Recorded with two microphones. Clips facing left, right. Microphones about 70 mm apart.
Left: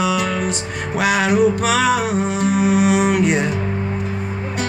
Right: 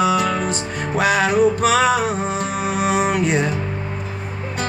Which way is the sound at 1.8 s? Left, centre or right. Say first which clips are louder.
Even; right.